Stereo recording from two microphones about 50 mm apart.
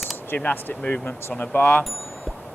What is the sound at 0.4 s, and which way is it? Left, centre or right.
Speech, left.